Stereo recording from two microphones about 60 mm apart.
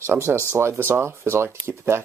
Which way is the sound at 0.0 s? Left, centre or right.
Right.